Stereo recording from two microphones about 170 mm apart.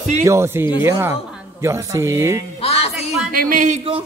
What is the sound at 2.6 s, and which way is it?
Music, 40° left (ahead or behind).